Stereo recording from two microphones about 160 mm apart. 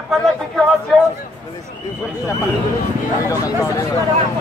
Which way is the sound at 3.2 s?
20° left (ahead or behind).